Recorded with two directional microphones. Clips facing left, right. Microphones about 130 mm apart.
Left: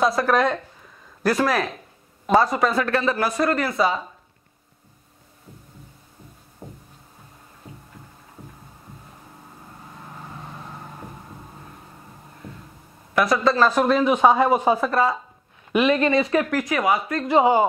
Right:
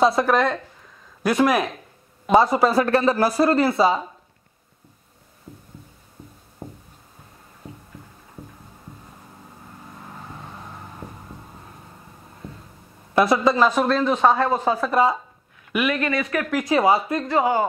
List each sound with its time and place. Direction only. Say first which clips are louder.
0.0 s a woman's voice: right 3 dB; 20° right (ahead or behind)
0.3 s speech: even; centre (ahead or behind)
1.2 s speech: right 2 dB; 15° right (ahead or behind)
2.3 s speech: right 2 dB; 25° right (ahead or behind)
6.6 s music: right 3 dB; 20° right (ahead or behind)
13.1 s a woman's voice: right 2 dB; 25° right (ahead or behind)
13.7 s speech: left 1 dB; 10° left (ahead or behind)
14.9 s speech: right 2 dB; 15° right (ahead or behind)
15.7 s speech: left 4 dB; 25° left (ahead or behind)
16.6 s a woman's voice: right 3 dB; 30° right (ahead or behind)
17.3 s speech: left 4 dB; 20° left (ahead or behind)